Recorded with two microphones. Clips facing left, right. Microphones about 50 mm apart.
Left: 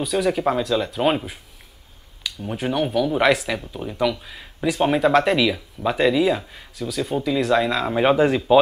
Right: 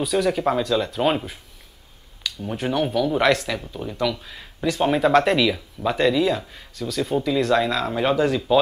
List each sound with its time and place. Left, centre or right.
0.0 s speech: centre
7.9 s speech: left